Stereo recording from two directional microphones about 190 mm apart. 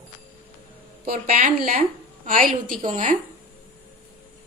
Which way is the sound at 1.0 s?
50° right (ahead or behind).